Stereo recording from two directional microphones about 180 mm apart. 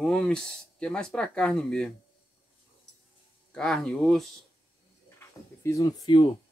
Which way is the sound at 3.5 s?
5° left (ahead or behind).